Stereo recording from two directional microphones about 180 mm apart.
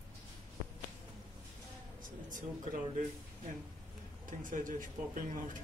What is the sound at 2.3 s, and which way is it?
Speech, 45° right (ahead or behind).